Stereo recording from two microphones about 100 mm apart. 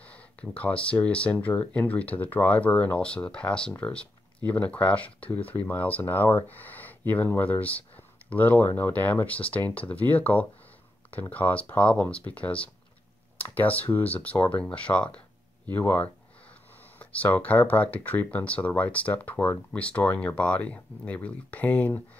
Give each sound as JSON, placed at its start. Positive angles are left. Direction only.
{"t": 0.0, "sound": "speech", "side_deg": 15}